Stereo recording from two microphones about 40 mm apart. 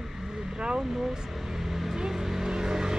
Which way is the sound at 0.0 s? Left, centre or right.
Centre.